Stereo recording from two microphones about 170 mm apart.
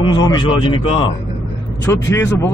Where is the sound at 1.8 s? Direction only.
10° left (ahead or behind).